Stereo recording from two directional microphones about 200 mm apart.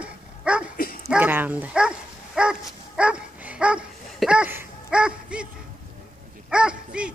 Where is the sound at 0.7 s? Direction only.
45° left (ahead or behind).